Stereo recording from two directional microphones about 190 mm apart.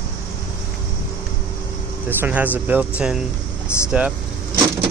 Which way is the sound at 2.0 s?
10° right (ahead or behind).